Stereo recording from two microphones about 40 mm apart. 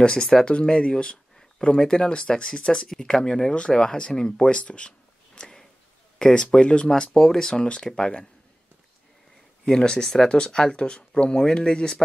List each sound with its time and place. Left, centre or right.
0.0 s speech: left
1.8 s speech: centre
4.6 s a sound: left
6.1 s speech: centre
7.2 s speech: centre
9.7 s speech: centre